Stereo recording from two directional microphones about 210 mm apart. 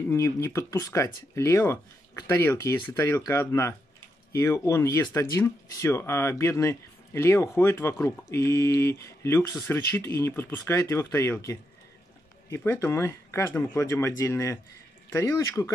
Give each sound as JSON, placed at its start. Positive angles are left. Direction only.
{"t": 0.1, "sound": "speech", "side_deg": 15}